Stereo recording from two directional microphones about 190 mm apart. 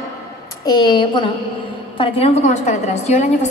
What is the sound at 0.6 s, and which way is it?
A woman's voice, 20° left (ahead or behind).